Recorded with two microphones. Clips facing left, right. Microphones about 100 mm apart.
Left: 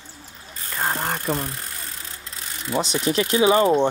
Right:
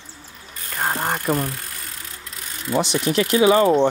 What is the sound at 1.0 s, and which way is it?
Speech, 20° right (ahead or behind).